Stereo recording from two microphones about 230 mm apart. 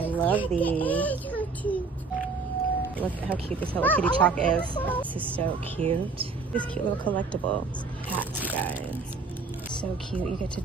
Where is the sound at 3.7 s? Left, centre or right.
Centre.